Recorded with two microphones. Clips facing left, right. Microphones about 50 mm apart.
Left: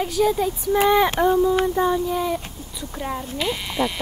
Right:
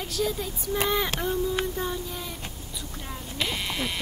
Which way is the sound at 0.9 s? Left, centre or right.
Left.